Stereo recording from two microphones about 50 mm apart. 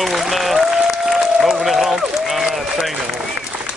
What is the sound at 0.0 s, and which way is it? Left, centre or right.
Applause, centre.